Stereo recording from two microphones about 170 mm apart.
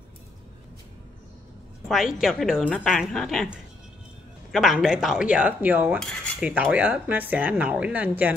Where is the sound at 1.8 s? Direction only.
Centre (ahead or behind).